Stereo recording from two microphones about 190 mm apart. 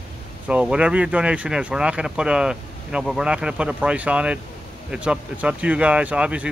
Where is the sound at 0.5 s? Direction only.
5° right (ahead or behind).